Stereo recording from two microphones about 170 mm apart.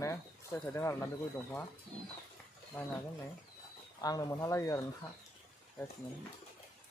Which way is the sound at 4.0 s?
20° left (ahead or behind).